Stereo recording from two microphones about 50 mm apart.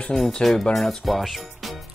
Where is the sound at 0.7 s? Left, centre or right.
Centre.